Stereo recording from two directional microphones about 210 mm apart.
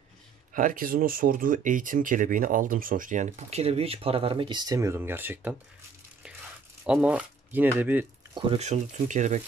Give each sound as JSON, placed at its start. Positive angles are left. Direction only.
{"t": 0.5, "sound": "speech", "side_deg": -40}
{"t": 6.9, "sound": "speech", "side_deg": -5}
{"t": 8.4, "sound": "speech", "side_deg": -30}